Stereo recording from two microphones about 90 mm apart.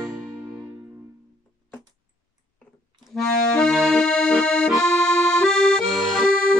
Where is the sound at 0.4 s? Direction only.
20° right (ahead or behind).